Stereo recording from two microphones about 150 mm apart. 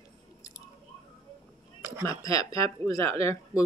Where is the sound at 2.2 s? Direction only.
20° left (ahead or behind).